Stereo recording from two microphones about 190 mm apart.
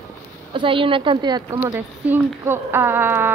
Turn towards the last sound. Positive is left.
turn(degrees=-10)  # may be behind; listen again after turning